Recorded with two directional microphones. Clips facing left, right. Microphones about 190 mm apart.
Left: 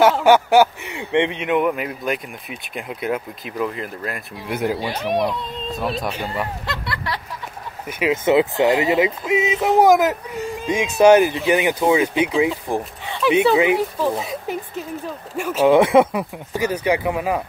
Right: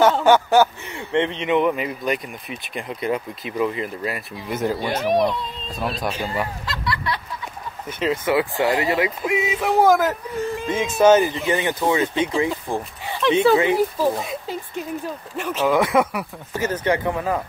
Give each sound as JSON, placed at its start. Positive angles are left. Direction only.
{"t": 0.0, "sound": "speech", "side_deg": 10}
{"t": 4.5, "sound": "speech", "side_deg": 10}
{"t": 5.0, "sound": "speech", "side_deg": 0}
{"t": 6.6, "sound": "a sound", "side_deg": 60}
{"t": 8.0, "sound": "speech", "side_deg": 20}
{"t": 13.7, "sound": "speech", "side_deg": -5}
{"t": 15.3, "sound": "speech", "side_deg": 10}
{"t": 15.6, "sound": "speech", "side_deg": 25}
{"t": 16.6, "sound": "speech", "side_deg": 10}